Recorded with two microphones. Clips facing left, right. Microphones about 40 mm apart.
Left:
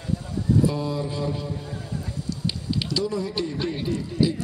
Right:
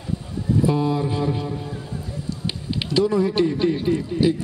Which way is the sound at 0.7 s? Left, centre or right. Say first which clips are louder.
Right 5 dB; right.